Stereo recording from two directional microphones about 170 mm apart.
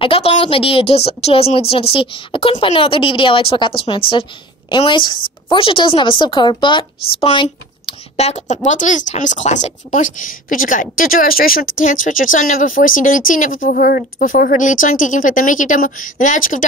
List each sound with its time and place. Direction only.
0.0 s a woman's voice: 35° left (ahead or behind); by 16.6 s 50° left (ahead or behind)